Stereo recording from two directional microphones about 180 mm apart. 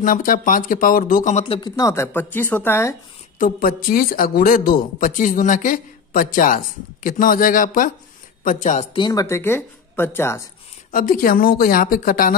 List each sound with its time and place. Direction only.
0.0 s speech: 50° left (ahead or behind)
1.4 s speech: 30° left (ahead or behind)
1.8 s speech: 15° left (ahead or behind)
3.3 s speech: 50° left (ahead or behind)
8.9 s speech: 20° left (ahead or behind)
10.9 s speech: 50° left (ahead or behind)